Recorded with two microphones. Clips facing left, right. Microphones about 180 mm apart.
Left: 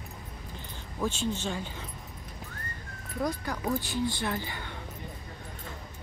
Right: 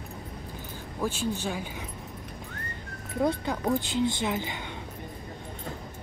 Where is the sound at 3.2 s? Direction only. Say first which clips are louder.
Right 5 dB; 25° right (ahead or behind).